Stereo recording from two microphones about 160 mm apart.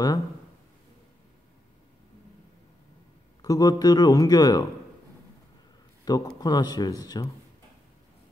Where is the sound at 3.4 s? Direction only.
25° left (ahead or behind).